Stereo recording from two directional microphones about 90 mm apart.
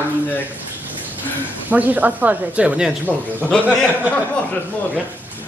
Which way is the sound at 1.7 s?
20° right (ahead or behind).